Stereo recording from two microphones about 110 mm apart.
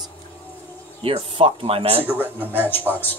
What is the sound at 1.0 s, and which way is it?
Speech, 55° right (ahead or behind).